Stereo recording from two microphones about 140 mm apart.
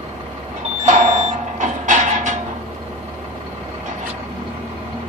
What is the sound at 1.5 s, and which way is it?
Vehicle, 65° right (ahead or behind).